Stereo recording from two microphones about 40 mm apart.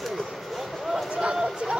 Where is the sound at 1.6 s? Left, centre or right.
Right.